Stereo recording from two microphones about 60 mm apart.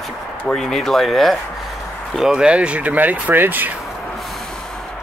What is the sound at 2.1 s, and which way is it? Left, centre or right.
Speech, centre.